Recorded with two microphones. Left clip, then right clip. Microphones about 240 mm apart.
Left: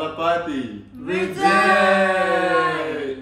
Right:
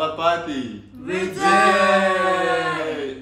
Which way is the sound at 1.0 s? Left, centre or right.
Centre.